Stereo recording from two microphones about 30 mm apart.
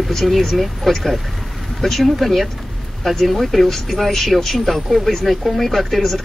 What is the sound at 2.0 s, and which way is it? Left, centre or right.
Speech, centre.